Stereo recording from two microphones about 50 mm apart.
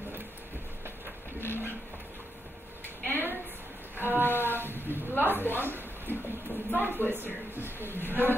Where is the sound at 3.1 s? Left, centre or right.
Right.